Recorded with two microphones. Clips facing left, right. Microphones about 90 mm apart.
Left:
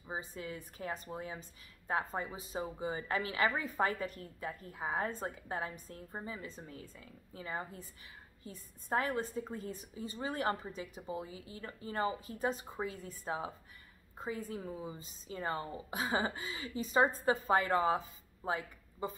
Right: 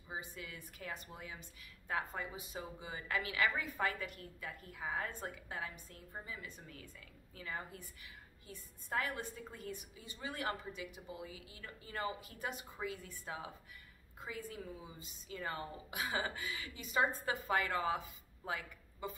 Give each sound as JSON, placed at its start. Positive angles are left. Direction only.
{"t": 0.0, "sound": "a woman's voice", "side_deg": 35}